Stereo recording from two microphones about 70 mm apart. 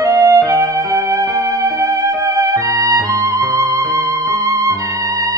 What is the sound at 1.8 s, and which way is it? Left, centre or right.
Music, right.